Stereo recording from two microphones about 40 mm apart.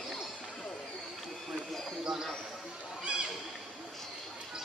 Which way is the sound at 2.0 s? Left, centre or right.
Centre.